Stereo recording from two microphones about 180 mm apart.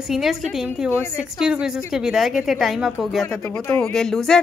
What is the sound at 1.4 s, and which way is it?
A woman's voice, 5° right (ahead or behind).